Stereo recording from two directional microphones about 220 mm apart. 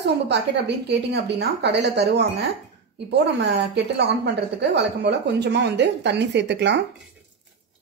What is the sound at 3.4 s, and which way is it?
Speech, 50° right (ahead or behind).